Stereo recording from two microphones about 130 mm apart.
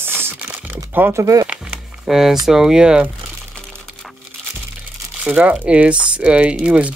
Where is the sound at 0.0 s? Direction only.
15° right (ahead or behind).